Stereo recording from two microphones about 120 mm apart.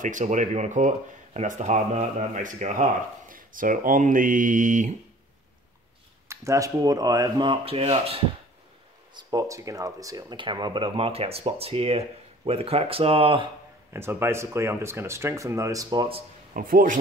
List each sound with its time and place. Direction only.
0.0 s speech: 90° right
6.2 s speech: 25° right (ahead or behind)
7.6 s speech: 55° right (ahead or behind)
9.1 s speech: 30° right (ahead or behind)
10.3 s speech: 40° right (ahead or behind)
13.9 s speech: 20° right (ahead or behind)